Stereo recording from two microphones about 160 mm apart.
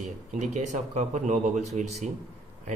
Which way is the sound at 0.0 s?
50° right (ahead or behind).